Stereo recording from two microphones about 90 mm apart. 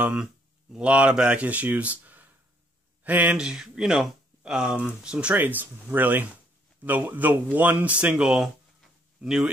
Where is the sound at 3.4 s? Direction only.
5° right (ahead or behind).